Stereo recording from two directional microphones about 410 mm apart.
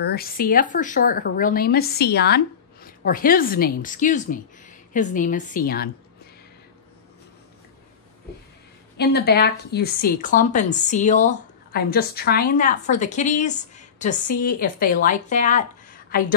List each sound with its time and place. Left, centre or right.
0.0 s speech: left
8.9 s speech: left